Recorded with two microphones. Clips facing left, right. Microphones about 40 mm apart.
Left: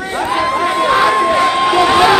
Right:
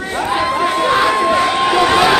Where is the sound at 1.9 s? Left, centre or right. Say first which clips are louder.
Left 3 dB; centre.